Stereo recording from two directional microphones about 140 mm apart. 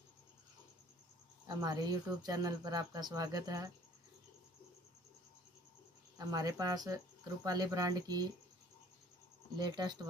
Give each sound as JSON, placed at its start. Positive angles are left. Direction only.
{"t": 1.5, "sound": "speech", "side_deg": -25}
{"t": 6.1, "sound": "speech", "side_deg": -25}
{"t": 9.6, "sound": "speech", "side_deg": -30}